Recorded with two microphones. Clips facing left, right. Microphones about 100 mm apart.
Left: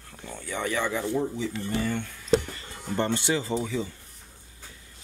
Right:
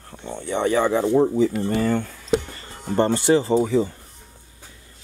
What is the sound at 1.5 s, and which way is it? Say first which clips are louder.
Speech: right 7 dB; 65° right (ahead or behind).